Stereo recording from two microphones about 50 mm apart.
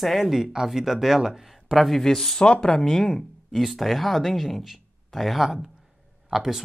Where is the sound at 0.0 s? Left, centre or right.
Centre.